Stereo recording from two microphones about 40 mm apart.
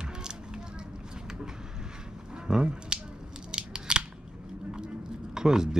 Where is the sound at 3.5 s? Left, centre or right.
Right.